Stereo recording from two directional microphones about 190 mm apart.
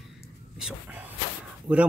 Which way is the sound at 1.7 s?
10° right (ahead or behind).